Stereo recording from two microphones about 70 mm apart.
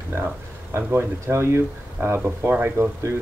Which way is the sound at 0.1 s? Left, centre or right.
Right.